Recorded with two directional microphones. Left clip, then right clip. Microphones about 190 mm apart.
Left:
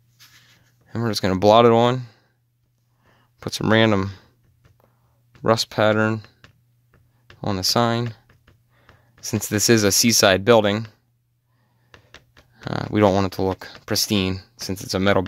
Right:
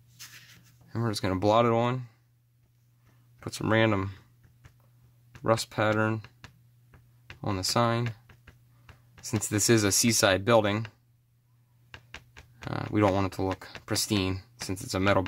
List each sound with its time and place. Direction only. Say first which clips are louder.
0.8 s speech: left 8 dB; 40° left (ahead or behind)
3.3 s speech: left 8 dB; 45° left (ahead or behind)
5.4 s speech: left 8 dB; 45° left (ahead or behind)
7.3 s speech: left 7 dB; 35° left (ahead or behind)
9.2 s speech: left 7 dB; 40° left (ahead or behind)
12.6 s speech: left 8 dB; 40° left (ahead or behind)